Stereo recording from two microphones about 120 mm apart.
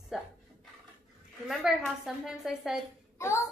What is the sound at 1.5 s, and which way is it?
A woman's voice, 5° right (ahead or behind).